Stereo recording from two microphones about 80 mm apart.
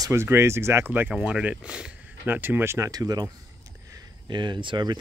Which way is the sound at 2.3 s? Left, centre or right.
Right.